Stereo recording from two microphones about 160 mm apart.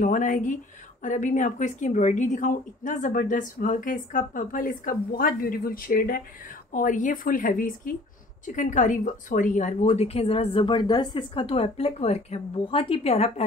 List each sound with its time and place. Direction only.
0.0 s a woman's voice: 55° left (ahead or behind)
6.7 s a woman's voice: 55° left (ahead or behind); by 13.3 s 40° left (ahead or behind)